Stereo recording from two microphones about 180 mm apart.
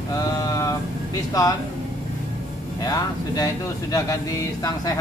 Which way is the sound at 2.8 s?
20° left (ahead or behind).